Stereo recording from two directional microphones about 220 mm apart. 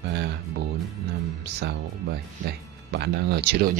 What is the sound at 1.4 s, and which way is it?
Speech, 50° right (ahead or behind).